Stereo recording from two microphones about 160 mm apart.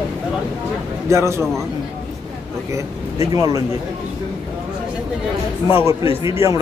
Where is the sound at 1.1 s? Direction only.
15° right (ahead or behind).